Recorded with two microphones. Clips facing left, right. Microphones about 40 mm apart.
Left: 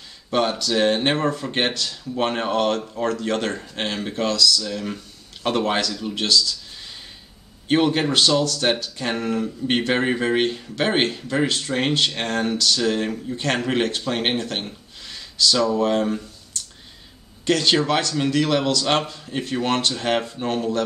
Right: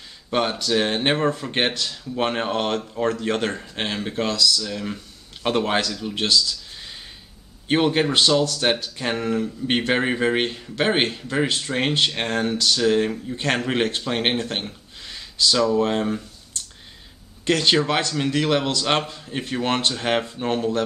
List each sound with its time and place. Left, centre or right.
0.3 s speech: centre
7.6 s speech: centre
17.5 s speech: centre